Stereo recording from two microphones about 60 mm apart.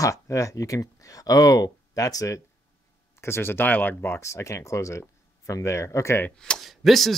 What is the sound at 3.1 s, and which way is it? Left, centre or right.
Speech, left.